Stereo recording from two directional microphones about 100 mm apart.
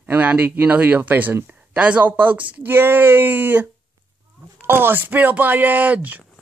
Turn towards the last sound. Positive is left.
turn(degrees=-15)  # may be behind; listen again after turning